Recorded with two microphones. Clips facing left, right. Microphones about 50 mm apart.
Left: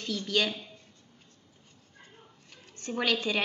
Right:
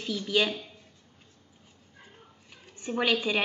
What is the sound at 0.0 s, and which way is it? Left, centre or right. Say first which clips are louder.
Speech: right 2 dB; centre.